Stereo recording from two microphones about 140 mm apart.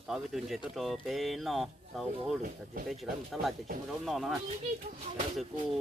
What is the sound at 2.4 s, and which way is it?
Speech, 90° right.